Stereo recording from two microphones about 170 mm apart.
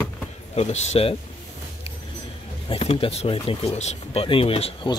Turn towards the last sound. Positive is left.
turn(degrees=30)  # may be behind; listen again after turning